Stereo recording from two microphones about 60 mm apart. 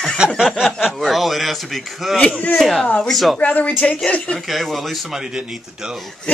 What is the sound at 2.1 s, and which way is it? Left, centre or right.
Speech, left.